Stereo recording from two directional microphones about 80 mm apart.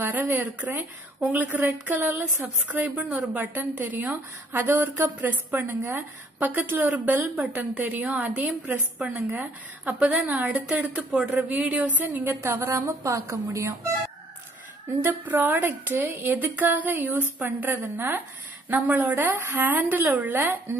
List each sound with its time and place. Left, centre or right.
0.0 s a woman's voice: right
12.3 s a woman's voice: right
14.9 s a woman's voice: right